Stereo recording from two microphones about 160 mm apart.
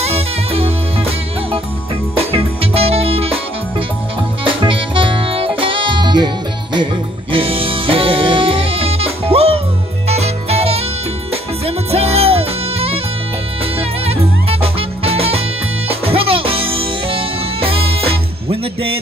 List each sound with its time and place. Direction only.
0.1 s music: 35° right (ahead or behind)
2.1 s music: 35° right (ahead or behind)
4.5 s music: 30° right (ahead or behind)